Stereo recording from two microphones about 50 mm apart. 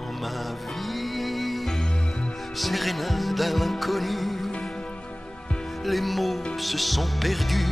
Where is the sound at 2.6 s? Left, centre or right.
Centre.